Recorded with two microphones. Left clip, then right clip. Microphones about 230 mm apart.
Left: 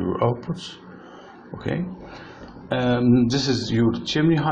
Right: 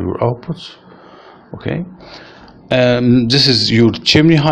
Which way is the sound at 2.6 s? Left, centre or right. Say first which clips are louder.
Right 9 dB; right.